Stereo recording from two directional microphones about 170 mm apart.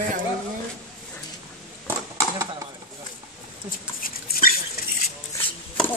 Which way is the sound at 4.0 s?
55° left (ahead or behind).